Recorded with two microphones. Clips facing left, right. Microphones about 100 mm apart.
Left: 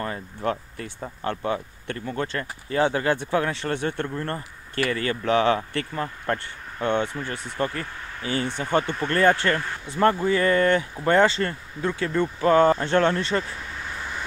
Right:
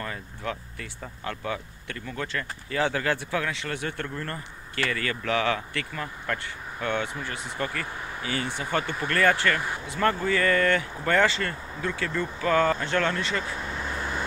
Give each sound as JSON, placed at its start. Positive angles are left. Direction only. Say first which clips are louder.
{"t": 0.0, "sound": "speech", "louder": "left 6 dB", "side_deg": 35}
{"t": 8.5, "sound": "speech", "louder": "left 6 dB", "side_deg": -10}
{"t": 9.1, "sound": "speech", "louder": "left 3 dB", "side_deg": 25}